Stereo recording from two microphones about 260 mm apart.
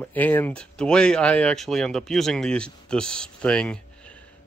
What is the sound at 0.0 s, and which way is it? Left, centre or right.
Speech, centre.